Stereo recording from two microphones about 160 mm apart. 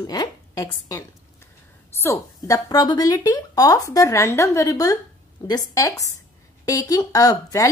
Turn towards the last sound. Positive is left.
turn(degrees=20)  # may be behind; listen again after turning